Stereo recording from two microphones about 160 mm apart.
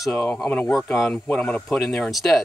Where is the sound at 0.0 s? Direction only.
5° left (ahead or behind).